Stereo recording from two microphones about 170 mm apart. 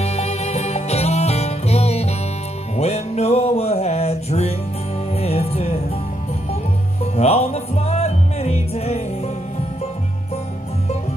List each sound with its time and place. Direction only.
0.0 s music: 40° left (ahead or behind)
7.2 s music: 35° left (ahead or behind)